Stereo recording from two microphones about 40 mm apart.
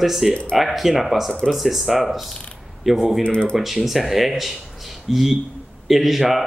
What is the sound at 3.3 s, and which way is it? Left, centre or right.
Speech, left.